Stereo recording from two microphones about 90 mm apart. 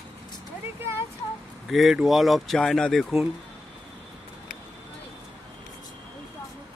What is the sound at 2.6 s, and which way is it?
Speech, 10° left (ahead or behind).